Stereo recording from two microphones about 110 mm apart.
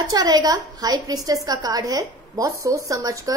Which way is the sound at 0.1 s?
40° right (ahead or behind).